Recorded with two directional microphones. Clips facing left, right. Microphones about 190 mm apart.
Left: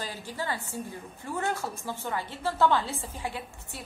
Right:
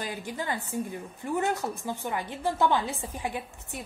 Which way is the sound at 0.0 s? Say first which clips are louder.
Right 2 dB; 15° right (ahead or behind).